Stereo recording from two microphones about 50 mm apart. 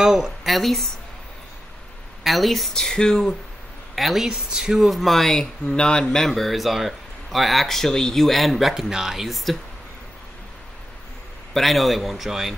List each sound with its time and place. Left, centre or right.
0.0 s speech: centre
2.2 s speech: centre
2.7 s speech: centre
3.9 s speech: centre
4.3 s speech: centre
5.7 s speech: centre
11.5 s speech: centre